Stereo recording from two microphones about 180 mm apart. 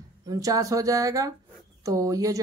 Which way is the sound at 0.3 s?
20° right (ahead or behind).